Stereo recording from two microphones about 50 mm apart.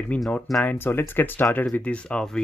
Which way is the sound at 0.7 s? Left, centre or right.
Left.